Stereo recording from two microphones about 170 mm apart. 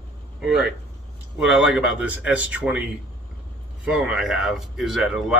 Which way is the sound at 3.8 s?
5° right (ahead or behind).